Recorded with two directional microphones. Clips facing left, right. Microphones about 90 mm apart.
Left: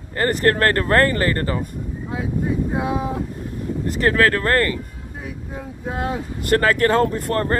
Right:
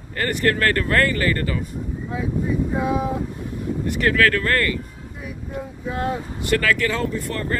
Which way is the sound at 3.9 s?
35° left (ahead or behind).